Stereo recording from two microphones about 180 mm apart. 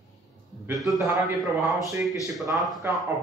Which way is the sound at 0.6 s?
Centre (ahead or behind).